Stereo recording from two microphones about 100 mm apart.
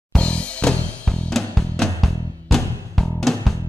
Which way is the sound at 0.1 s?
10° left (ahead or behind).